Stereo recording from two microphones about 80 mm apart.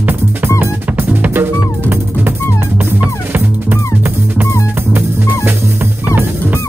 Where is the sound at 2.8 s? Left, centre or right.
Right.